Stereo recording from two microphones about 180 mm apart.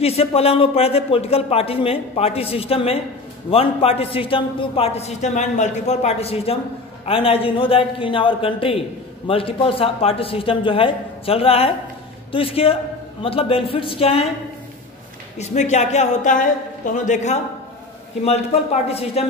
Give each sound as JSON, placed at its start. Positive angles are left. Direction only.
{"t": 0.0, "sound": "a man's voice", "side_deg": 35}
{"t": 15.3, "sound": "a man's voice", "side_deg": 40}